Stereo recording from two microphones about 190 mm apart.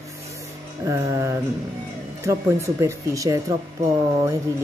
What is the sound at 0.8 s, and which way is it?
Speech, 15° right (ahead or behind).